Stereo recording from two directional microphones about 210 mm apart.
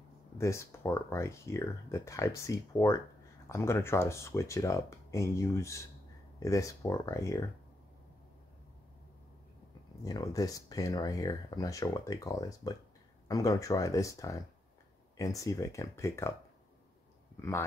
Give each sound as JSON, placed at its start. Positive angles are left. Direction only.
{"t": 0.4, "sound": "speech", "side_deg": 15}
{"t": 10.0, "sound": "speech", "side_deg": 15}
{"t": 17.4, "sound": "speech", "side_deg": 10}